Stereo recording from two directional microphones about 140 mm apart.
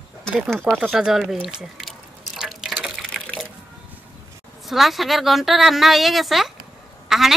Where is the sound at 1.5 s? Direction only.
5° right (ahead or behind).